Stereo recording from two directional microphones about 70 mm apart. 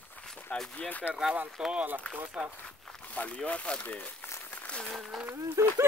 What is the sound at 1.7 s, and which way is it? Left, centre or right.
Speech, right.